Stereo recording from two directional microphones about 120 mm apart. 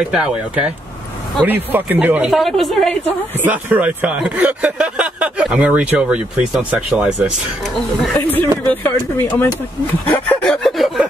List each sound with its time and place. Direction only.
0.1 s speech: 5° right (ahead or behind)
2.3 s a woman's voice: centre (ahead or behind)
3.3 s speech: 15° right (ahead or behind)
8.2 s speech: 15° left (ahead or behind)
10.4 s a sound: 5° left (ahead or behind)